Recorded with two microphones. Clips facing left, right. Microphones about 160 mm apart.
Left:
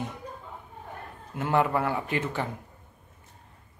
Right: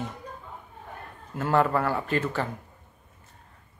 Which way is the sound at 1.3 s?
15° left (ahead or behind).